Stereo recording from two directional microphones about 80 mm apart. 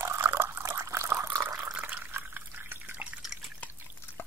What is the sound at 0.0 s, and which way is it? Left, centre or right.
Water, right.